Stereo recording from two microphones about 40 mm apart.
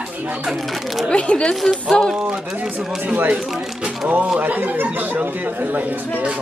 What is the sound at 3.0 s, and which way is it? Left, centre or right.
Speech, right.